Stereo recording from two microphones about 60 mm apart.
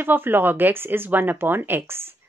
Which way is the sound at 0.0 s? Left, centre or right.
Right.